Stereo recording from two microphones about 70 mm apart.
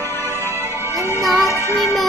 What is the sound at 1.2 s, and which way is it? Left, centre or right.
Music, centre.